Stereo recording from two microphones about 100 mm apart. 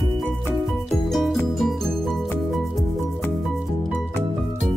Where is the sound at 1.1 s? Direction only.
Centre (ahead or behind).